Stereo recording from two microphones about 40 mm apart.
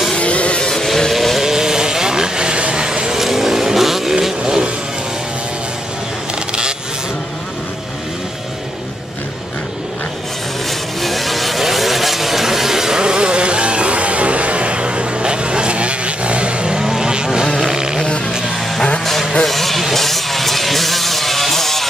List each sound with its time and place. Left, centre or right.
0.2 s vehicle: left
0.6 s vehicle: centre
1.4 s vehicle: centre
4.1 s vehicle: centre
11.0 s vehicle: centre
17.6 s buzz: centre
19.4 s a sound: centre